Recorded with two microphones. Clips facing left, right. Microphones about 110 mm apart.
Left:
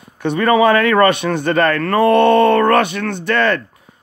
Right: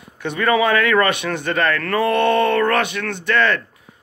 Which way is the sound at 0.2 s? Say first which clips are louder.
Left 5 dB; 35° left (ahead or behind).